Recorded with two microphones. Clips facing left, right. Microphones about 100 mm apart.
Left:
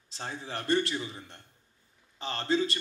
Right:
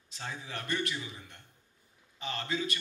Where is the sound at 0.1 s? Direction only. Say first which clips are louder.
Left 3 dB; 35° left (ahead or behind).